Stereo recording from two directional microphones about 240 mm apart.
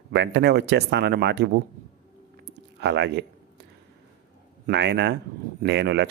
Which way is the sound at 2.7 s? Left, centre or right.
Right.